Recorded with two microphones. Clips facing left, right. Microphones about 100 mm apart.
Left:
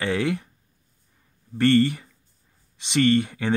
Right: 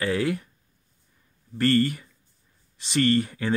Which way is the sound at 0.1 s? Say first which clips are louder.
Left 1 dB; 25° left (ahead or behind).